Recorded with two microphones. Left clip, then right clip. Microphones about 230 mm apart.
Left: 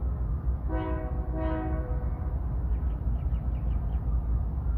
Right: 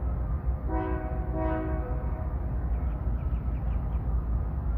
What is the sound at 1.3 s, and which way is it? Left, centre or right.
Train horn, left.